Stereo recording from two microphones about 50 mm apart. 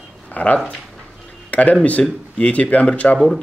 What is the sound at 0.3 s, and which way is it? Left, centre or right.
Speech, left.